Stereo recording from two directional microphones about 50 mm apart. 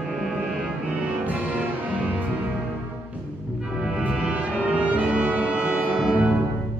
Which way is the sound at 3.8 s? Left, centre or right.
Right.